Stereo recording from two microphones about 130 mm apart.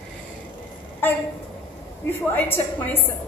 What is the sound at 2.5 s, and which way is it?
Speech, 15° left (ahead or behind).